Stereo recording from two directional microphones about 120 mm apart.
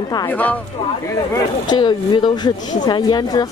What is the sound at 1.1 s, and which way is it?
Speech, 35° left (ahead or behind).